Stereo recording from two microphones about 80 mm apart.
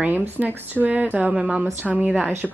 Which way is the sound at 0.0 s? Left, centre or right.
Right.